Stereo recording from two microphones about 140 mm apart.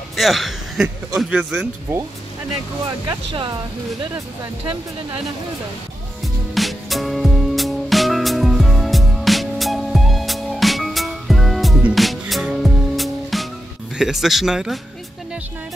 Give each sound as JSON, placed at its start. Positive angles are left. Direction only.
{"t": 0.1, "sound": "speech", "side_deg": 0}
{"t": 3.1, "sound": "speech", "side_deg": -30}
{"t": 6.2, "sound": "music", "side_deg": 0}
{"t": 13.9, "sound": "speech", "side_deg": -5}